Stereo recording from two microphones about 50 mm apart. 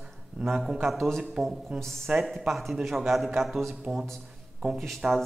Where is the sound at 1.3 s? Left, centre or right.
Centre.